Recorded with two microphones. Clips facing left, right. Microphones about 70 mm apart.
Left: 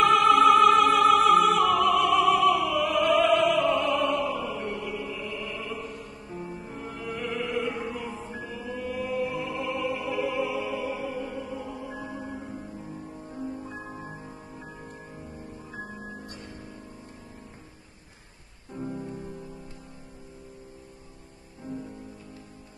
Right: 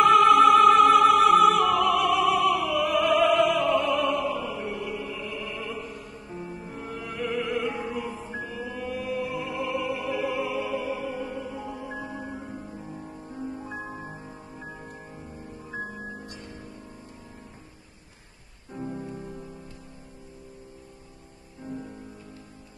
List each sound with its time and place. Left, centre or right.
0.0 s music: centre
1.3 s opera: centre
2.9 s music: centre
6.3 s music: centre
7.0 s music: centre
13.5 s music: right
13.8 s music: centre